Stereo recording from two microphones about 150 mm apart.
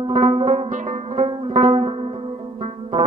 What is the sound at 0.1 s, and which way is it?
Music, 45° right (ahead or behind).